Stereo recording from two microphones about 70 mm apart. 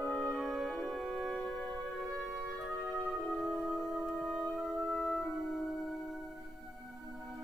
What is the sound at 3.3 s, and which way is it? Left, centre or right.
Music, centre.